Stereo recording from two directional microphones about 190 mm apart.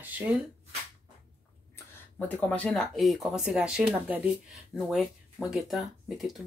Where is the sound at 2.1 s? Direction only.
10° left (ahead or behind).